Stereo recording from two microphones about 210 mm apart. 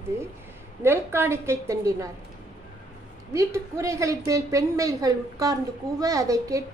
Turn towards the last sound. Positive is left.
turn(degrees=-15)  # may be behind; listen again after turning